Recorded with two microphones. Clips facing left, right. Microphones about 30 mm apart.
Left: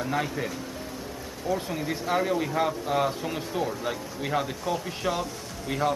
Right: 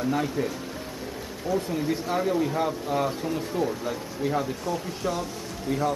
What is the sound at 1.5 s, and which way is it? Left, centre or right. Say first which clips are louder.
Speech: right 3 dB; centre.